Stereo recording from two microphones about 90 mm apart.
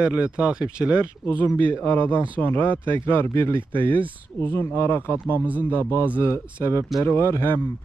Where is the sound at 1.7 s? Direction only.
25° left (ahead or behind).